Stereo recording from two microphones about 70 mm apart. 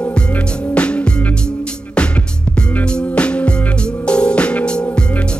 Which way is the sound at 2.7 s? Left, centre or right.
Left.